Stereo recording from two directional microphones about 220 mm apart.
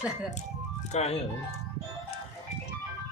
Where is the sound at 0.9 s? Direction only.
30° left (ahead or behind).